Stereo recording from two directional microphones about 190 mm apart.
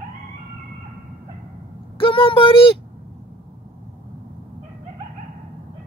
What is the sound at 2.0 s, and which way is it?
Speech, 25° left (ahead or behind).